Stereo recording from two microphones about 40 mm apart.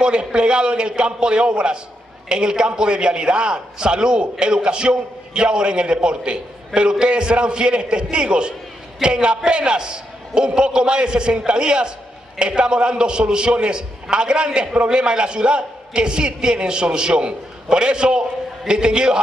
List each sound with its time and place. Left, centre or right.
0.0 s a man's voice: right